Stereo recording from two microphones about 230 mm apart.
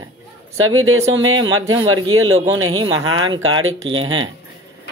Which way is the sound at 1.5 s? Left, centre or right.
Centre.